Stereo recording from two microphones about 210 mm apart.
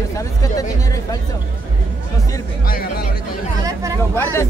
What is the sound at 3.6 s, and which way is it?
Speech, 15° right (ahead or behind).